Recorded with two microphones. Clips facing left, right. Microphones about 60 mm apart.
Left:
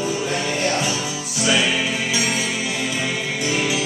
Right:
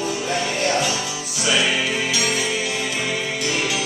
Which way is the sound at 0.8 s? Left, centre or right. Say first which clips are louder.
Even; centre.